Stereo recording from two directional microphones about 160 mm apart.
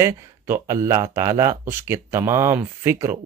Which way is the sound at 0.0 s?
15° right (ahead or behind).